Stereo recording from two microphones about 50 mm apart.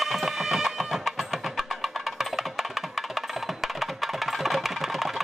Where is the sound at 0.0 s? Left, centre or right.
Centre.